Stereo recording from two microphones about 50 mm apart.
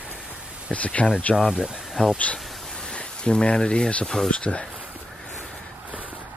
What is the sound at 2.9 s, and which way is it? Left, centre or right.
Speech, centre.